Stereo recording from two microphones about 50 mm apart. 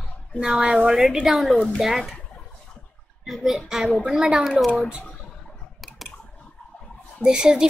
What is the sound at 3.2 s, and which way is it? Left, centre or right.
A woman's voice, centre.